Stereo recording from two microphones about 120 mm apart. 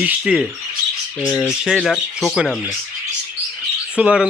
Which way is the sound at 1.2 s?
30° left (ahead or behind).